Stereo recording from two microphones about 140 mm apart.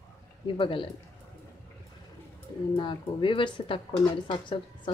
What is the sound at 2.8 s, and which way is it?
Speech, 35° left (ahead or behind).